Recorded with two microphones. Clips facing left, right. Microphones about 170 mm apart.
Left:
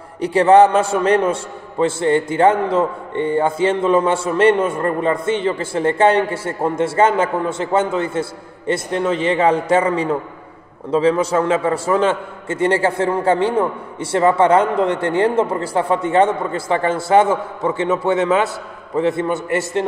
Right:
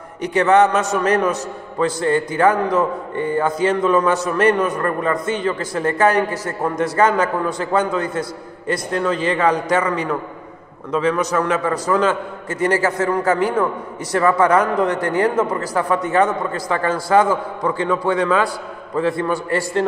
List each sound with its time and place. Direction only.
0.2 s a man's voice: 30° left (ahead or behind)